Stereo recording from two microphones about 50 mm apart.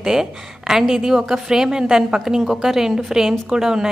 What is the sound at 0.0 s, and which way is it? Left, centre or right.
A woman's voice, centre.